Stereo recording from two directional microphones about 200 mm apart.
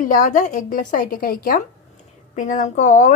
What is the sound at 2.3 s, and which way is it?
Speech, 35° left (ahead or behind).